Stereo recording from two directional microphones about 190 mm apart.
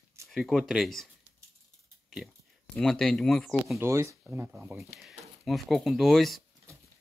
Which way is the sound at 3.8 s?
15° right (ahead or behind).